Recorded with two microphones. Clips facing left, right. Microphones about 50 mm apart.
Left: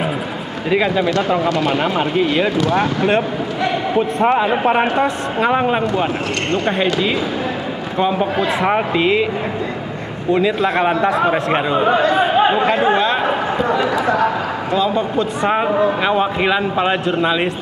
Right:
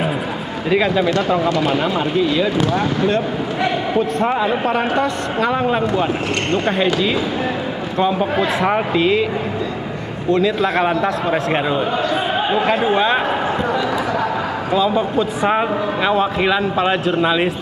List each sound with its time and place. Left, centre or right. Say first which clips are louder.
0.7 s a man's voice: even; centre
1.8 s speech: left 1 dB; left
4.3 s a man's voice: left 3 dB; left
6.5 s a man's voice: even; centre
10.3 s a man's voice: left 1 dB; centre
12.9 s a man's voice: even; centre
14.7 s a man's voice: right 1 dB; centre